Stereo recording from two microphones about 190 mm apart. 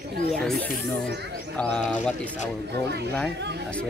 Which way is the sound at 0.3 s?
Centre (ahead or behind).